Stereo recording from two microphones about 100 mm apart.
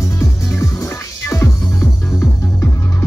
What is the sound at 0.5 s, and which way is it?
Music, 30° left (ahead or behind).